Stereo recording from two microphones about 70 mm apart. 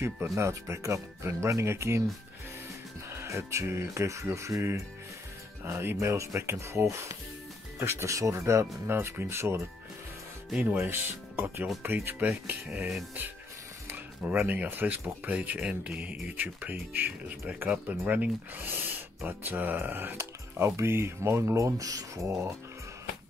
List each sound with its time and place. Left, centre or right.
0.0 s speech: right
3.1 s speech: right
7.8 s speech: right
8.1 s speech: right
8.8 s speech: right
10.8 s speech: right
13.8 s speech: right
20.2 s speech: right